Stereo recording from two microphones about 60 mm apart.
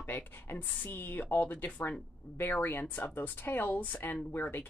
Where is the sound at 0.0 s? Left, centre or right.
Left.